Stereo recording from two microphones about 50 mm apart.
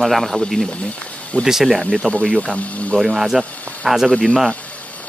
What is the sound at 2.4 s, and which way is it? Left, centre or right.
Speech, left.